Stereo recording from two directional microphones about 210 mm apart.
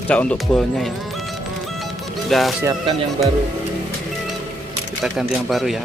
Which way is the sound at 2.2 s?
Centre (ahead or behind).